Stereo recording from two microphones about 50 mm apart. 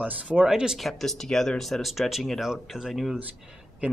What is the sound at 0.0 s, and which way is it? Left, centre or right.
Speech, right.